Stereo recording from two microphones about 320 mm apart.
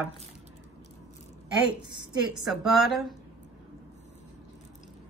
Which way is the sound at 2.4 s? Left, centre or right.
Centre.